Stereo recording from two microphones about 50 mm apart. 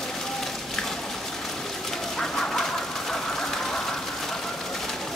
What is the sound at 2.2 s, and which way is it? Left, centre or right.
Bird, centre.